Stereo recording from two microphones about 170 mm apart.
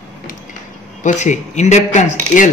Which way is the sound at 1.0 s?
45° left (ahead or behind).